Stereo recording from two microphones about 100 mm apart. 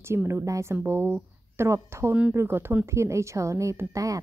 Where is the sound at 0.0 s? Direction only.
25° right (ahead or behind).